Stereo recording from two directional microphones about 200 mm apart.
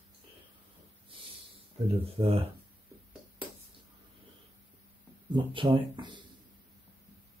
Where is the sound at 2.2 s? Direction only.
25° right (ahead or behind).